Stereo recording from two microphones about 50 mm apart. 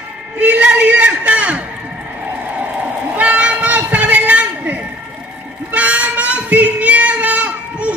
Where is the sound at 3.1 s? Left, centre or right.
Right.